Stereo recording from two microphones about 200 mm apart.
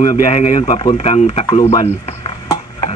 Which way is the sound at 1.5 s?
20° left (ahead or behind).